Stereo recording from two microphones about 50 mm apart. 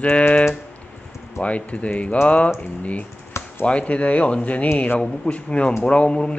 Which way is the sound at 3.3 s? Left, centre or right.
Left.